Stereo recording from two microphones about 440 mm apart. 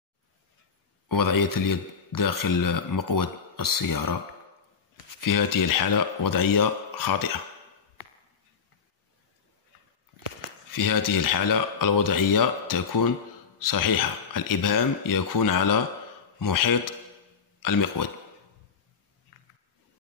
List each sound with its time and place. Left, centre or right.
1.0 s speech: left
5.2 s speech: left
10.7 s speech: left